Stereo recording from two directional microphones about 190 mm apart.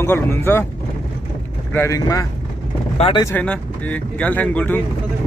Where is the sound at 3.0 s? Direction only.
30° left (ahead or behind).